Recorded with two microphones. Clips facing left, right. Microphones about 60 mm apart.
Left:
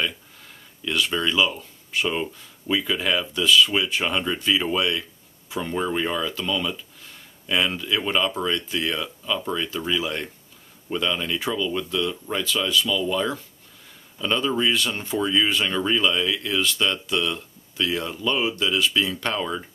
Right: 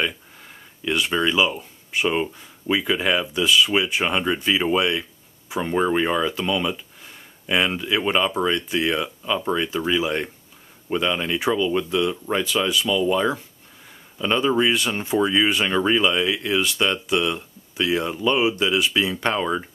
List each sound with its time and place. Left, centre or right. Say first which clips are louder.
0.8 s speech: right 3 dB; centre